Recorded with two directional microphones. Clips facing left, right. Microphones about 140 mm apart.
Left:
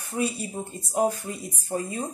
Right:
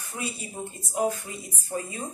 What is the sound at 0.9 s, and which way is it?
Speech, 40° left (ahead or behind).